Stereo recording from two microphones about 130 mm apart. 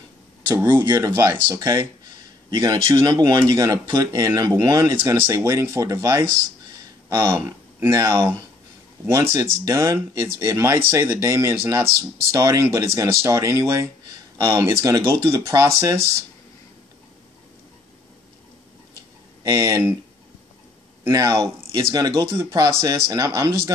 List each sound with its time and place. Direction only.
0.7 s speech: 35° right (ahead or behind)
1.1 s speech: 20° right (ahead or behind)
19.4 s speech: 25° right (ahead or behind)
21.1 s speech: 25° right (ahead or behind)